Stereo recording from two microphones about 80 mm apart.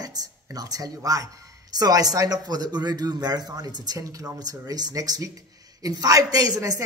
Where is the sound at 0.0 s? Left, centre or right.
Right.